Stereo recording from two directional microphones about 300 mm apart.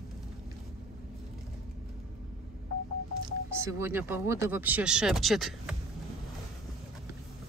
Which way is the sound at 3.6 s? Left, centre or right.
Centre.